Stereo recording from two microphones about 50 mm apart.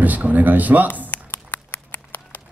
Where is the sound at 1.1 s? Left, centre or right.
Left.